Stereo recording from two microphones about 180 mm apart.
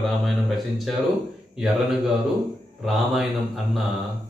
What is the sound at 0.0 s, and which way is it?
Speech, centre (ahead or behind).